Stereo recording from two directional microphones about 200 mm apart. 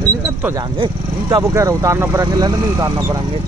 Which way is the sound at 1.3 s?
15° right (ahead or behind).